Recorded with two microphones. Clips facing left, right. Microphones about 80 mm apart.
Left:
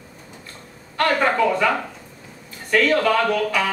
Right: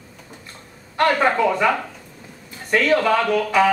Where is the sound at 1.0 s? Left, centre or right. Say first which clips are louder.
Right 1 dB; centre.